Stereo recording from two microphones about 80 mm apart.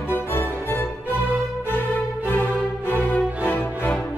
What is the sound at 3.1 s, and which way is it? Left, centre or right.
Music, left.